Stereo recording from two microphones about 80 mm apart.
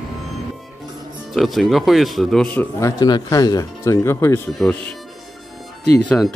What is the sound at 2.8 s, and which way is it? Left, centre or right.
Speech, left.